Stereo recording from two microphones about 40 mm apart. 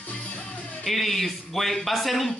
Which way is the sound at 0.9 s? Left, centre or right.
Centre.